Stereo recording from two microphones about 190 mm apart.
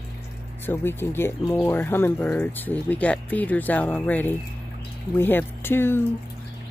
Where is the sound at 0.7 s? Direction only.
10° left (ahead or behind).